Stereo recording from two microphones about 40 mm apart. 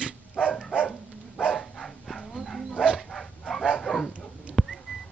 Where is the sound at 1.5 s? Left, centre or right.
Centre.